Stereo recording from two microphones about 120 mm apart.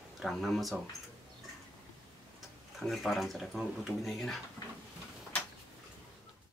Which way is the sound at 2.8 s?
Centre (ahead or behind).